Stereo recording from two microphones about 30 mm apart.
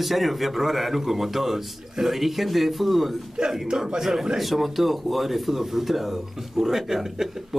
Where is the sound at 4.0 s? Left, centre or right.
Centre.